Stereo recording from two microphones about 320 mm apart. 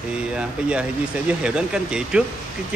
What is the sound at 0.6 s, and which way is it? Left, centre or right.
A man's voice, centre.